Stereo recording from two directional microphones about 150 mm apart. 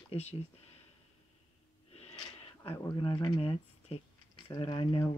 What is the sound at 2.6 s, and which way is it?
Speech, 35° left (ahead or behind).